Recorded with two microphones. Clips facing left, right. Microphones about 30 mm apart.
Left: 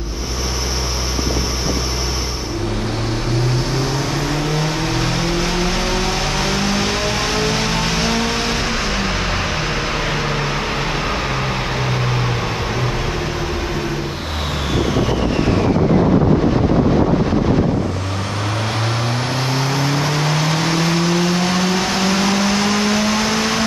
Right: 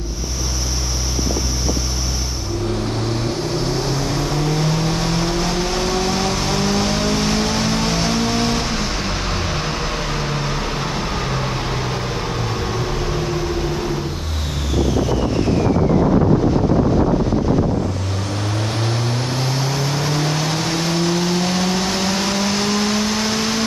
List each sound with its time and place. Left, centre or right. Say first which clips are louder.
5.9 s music: even; left
6.5 s vehicle: even; left
19.4 s vehicle: left 2 dB; left